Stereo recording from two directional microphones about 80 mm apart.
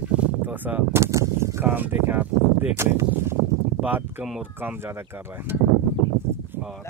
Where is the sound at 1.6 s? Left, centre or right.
Right.